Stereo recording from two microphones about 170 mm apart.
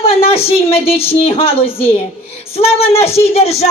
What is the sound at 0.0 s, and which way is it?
Speech, 35° left (ahead or behind).